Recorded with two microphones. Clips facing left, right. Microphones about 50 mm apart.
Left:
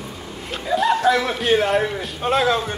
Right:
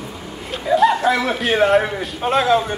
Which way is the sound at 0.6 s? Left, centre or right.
Centre.